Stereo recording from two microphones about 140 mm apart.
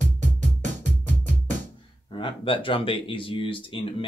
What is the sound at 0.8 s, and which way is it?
Music, 60° right (ahead or behind).